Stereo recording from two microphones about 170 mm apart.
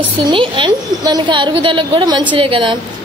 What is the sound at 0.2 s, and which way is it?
A woman's voice, 30° right (ahead or behind).